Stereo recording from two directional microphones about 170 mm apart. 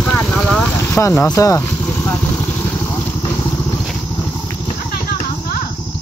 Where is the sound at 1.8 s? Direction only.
10° left (ahead or behind).